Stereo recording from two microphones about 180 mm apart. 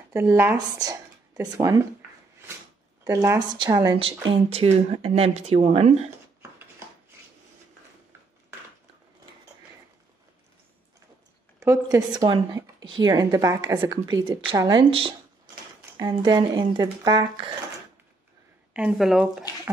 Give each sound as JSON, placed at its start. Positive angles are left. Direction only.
{"t": 0.1, "sound": "speech", "side_deg": -15}
{"t": 3.0, "sound": "speech", "side_deg": -15}
{"t": 11.6, "sound": "a woman's voice", "side_deg": -20}
{"t": 18.7, "sound": "speech", "side_deg": -10}